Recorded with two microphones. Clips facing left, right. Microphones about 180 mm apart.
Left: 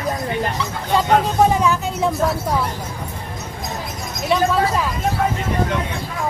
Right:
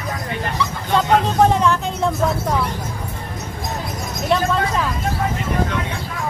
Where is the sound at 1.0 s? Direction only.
5° left (ahead or behind).